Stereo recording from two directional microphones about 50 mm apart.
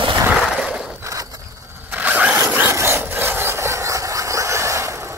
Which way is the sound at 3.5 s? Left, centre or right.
Right.